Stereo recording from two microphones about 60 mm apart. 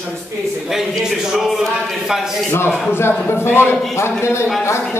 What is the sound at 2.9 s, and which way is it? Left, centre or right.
A man's voice, left.